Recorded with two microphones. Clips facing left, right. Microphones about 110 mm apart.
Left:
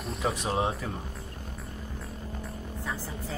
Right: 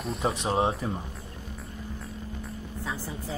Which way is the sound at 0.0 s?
Centre (ahead or behind).